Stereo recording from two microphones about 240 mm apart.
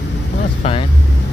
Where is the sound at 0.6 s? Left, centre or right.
Left.